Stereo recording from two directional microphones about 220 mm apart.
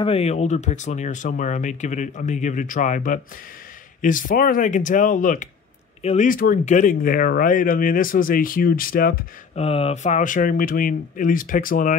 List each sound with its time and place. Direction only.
0.0 s speech: 25° left (ahead or behind)
9.6 s speech: 25° left (ahead or behind)